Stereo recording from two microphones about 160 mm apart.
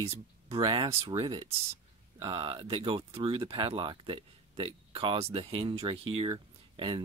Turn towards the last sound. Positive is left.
turn(degrees=-30)  # may be behind; listen again after turning